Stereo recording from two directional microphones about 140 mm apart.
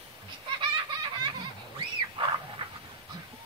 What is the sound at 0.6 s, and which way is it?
Baby laughter, 35° right (ahead or behind).